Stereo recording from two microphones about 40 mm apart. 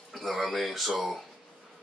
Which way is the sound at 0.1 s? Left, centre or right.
Centre.